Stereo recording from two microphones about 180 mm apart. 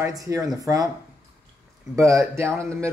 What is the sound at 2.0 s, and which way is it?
Speech, 15° right (ahead or behind).